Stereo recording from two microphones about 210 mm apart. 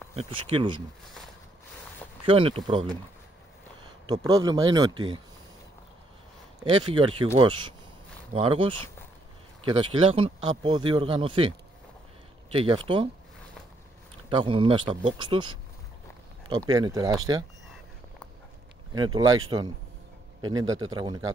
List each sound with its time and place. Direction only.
0.1 s speech: 30° right (ahead or behind)
2.2 s speech: 25° right (ahead or behind)
4.3 s speech: 20° right (ahead or behind)
6.6 s speech: 25° right (ahead or behind)
12.5 s speech: 25° right (ahead or behind)
14.3 s speech: 25° right (ahead or behind)
18.9 s speech: 20° right (ahead or behind)
20.4 s speech: 15° right (ahead or behind)